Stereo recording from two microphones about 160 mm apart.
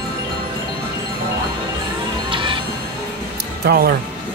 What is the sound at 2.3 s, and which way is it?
Music, 30° right (ahead or behind).